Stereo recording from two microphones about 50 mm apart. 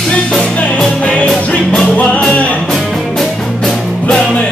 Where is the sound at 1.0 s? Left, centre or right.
Left.